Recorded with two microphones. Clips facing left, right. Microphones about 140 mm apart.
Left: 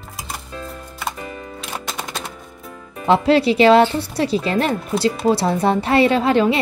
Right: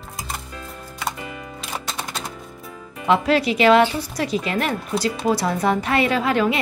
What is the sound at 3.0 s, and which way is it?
A woman's voice, 30° left (ahead or behind).